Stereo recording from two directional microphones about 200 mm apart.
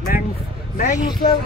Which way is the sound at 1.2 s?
50° left (ahead or behind).